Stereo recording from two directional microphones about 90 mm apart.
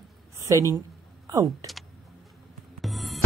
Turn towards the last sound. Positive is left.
turn(degrees=0)  # may be behind; listen again after turning